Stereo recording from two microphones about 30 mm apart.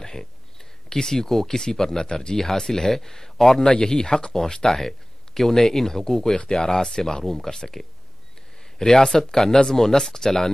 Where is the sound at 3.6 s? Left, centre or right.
Left.